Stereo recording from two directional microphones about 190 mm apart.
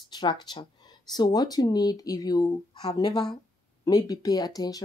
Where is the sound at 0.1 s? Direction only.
20° left (ahead or behind).